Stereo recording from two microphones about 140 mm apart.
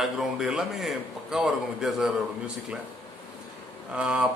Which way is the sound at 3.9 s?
5° right (ahead or behind).